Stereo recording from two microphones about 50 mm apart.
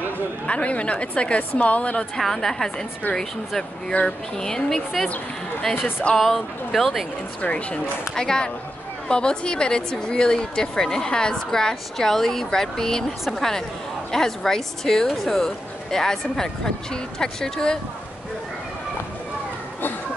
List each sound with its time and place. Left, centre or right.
0.5 s a woman's voice: left
2.1 s speech: centre
3.9 s speech: left
4.4 s speech: centre
5.8 s speech: left
6.1 s speech: centre
7.4 s a woman's voice: left